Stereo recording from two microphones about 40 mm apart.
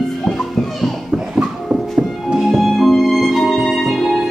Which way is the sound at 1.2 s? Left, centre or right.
Centre.